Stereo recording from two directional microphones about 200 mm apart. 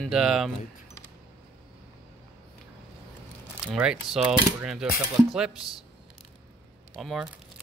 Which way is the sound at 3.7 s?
5° right (ahead or behind).